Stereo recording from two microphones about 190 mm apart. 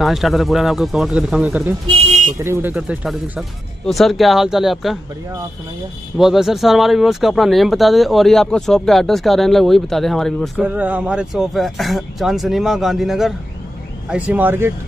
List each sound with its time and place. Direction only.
0.0 s speech: centre (ahead or behind)
1.9 s car alarm: 35° right (ahead or behind)
2.3 s speech: 15° right (ahead or behind)
6.1 s speech: centre (ahead or behind)